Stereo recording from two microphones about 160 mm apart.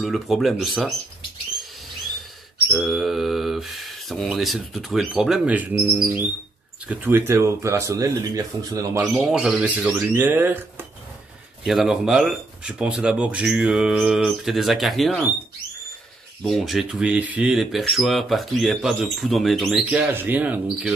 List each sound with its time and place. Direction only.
0.0 s speech: centre (ahead or behind)
2.7 s speech: centre (ahead or behind); by 9.0 s 20° right (ahead or behind)
9.0 s speech: 5° right (ahead or behind)
11.6 s speech: centre (ahead or behind)
16.4 s speech: centre (ahead or behind)